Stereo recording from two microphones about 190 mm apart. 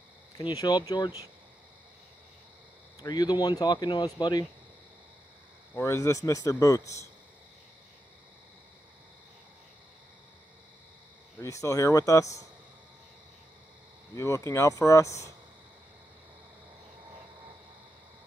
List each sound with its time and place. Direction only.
0.4 s speech: 20° left (ahead or behind)
3.0 s speech: 20° left (ahead or behind)
5.8 s a man's voice: 15° left (ahead or behind)
11.3 s a man's voice: 15° left (ahead or behind)
14.1 s a man's voice: 15° left (ahead or behind)